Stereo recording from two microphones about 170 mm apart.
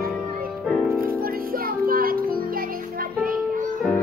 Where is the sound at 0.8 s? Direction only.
60° right (ahead or behind).